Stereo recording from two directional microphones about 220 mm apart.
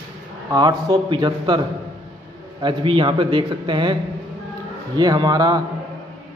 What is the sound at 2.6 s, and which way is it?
A man's voice, 25° right (ahead or behind).